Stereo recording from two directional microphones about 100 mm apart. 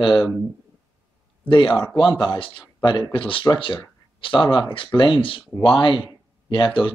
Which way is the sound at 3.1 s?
60° left (ahead or behind).